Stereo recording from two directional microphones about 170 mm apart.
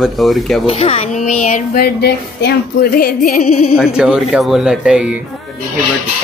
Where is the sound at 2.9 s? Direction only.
55° left (ahead or behind).